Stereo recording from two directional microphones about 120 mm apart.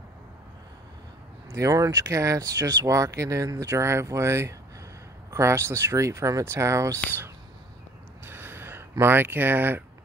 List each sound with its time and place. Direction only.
1.5 s speech: 25° right (ahead or behind)
8.3 s gasp: 20° right (ahead or behind)
9.0 s speech: 15° right (ahead or behind)